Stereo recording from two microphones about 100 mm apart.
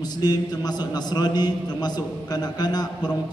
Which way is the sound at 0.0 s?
40° left (ahead or behind).